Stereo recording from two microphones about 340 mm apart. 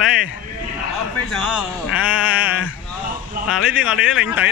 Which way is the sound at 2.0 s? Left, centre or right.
Centre.